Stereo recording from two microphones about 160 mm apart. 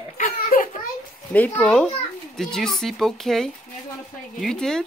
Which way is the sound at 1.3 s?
10° left (ahead or behind).